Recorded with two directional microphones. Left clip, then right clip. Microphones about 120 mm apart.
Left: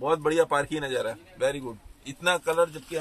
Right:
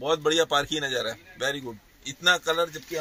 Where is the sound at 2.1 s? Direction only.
50° right (ahead or behind).